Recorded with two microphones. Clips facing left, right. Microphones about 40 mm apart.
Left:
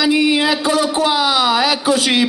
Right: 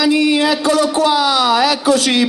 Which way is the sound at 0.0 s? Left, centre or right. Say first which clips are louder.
Right 1 dB; left.